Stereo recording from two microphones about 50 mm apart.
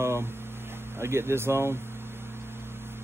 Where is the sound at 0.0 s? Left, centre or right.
Right.